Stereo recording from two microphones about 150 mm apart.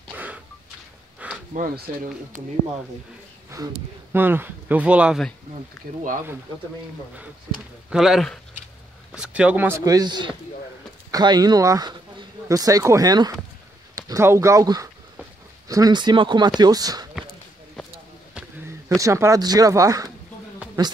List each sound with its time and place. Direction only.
0.1 s a sound: 10° right (ahead or behind)
1.9 s speech: 70° right (ahead or behind)
3.4 s speech: 20° right (ahead or behind)
7.9 s speech: centre (ahead or behind)
9.8 s speech: 25° right (ahead or behind)
18.9 s speech: 20° right (ahead or behind)